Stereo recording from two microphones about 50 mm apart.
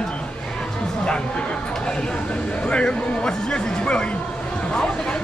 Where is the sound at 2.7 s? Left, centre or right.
Centre.